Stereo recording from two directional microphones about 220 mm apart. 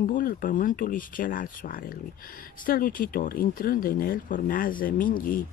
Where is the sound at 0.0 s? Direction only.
40° left (ahead or behind).